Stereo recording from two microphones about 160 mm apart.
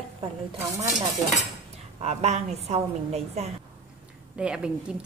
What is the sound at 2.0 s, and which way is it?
A woman's voice, 45° right (ahead or behind).